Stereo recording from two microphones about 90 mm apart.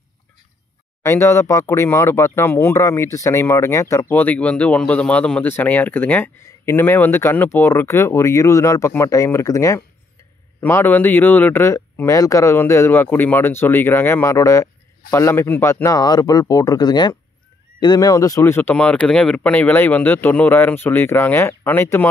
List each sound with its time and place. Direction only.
1.0 s speech: 30° left (ahead or behind)
4.1 s a man's voice: 20° left (ahead or behind); by 9.8 s 35° left (ahead or behind)
10.6 s speech: 20° left (ahead or behind)
11.7 s speech: 35° left (ahead or behind)
16.0 s speech: 45° left (ahead or behind); by 18.8 s 25° left (ahead or behind)
18.8 s speech: 10° left (ahead or behind); by 22.0 s 25° left (ahead or behind)